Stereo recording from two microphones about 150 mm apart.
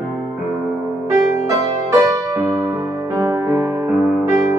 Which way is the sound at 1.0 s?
20° right (ahead or behind).